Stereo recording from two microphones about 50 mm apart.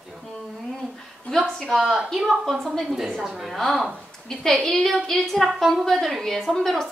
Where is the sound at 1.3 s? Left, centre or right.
Centre.